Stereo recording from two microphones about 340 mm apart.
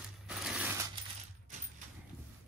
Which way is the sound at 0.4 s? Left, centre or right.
Centre.